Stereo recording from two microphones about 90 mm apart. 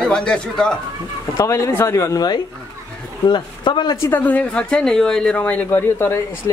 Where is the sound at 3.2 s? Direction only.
60° left (ahead or behind).